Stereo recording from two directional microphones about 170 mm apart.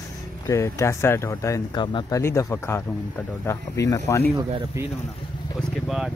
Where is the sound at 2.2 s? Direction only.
15° left (ahead or behind).